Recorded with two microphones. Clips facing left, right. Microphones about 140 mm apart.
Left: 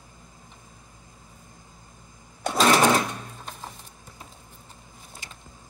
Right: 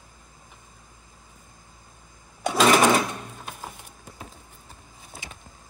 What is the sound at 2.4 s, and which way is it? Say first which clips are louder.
Sewing machine: right 1 dB; 5° right (ahead or behind).